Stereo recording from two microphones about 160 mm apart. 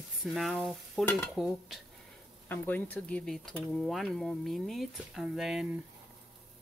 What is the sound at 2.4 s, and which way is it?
Speech, 10° left (ahead or behind).